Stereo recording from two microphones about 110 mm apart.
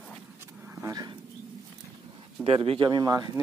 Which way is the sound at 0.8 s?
35° right (ahead or behind).